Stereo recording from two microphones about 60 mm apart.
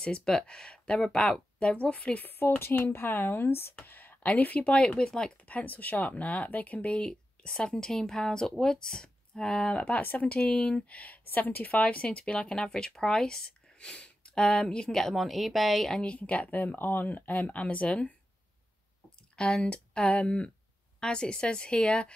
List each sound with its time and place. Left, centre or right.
0.0 s speech: centre
2.8 s speech: left; by 5.3 s centre
5.4 s speech: left
9.8 s speech: left; by 16.0 s centre
16.0 s speech: left
19.3 s speech: centre